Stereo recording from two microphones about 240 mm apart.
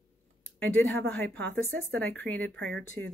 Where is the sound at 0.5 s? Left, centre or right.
Centre.